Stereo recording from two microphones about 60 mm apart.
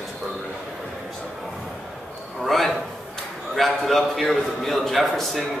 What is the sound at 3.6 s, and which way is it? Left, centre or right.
A man's voice, centre.